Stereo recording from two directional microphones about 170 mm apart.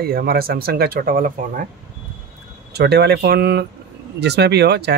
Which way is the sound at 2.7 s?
75° right (ahead or behind).